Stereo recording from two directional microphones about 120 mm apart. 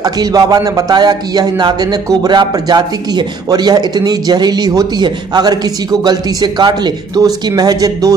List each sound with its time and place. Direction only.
0.0 s speech: 30° right (ahead or behind)